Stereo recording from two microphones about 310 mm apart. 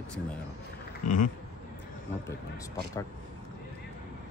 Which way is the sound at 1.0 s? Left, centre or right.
Left.